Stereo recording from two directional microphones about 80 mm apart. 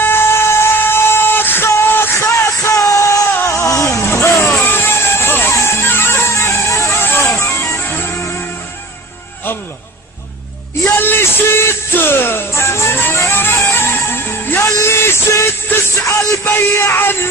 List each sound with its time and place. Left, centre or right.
0.0 s vehicle: left
3.3 s music: left
11.0 s music: left